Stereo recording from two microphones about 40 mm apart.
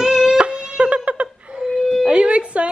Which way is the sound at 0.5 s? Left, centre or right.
Right.